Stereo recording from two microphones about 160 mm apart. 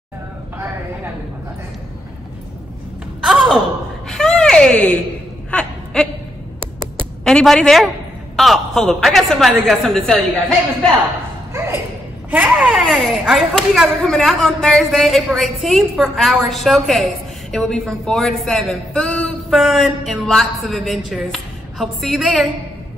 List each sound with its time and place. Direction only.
0.6 s a sound: 15° right (ahead or behind)
3.2 s gasp: centre (ahead or behind)
4.1 s a sound: 5° left (ahead or behind)
7.2 s a woman's voice: 5° left (ahead or behind)
11.5 s thump: 15° right (ahead or behind)
12.3 s speech: 10° right (ahead or behind)